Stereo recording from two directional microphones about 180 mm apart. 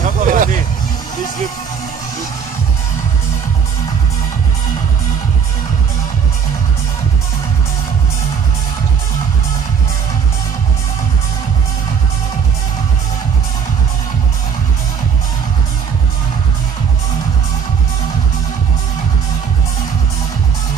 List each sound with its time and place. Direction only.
0.0 s vehicle: 45° right (ahead or behind)